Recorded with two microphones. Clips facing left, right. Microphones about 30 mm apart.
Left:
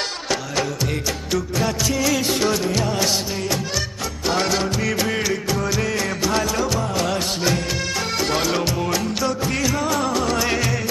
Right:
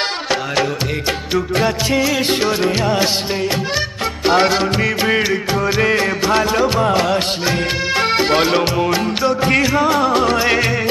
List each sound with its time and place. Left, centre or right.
1.3 s music: right
4.3 s music: right
7.0 s music: right
7.5 s music: right